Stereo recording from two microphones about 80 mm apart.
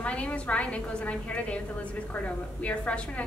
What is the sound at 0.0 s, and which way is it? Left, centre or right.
A woman's voice, centre.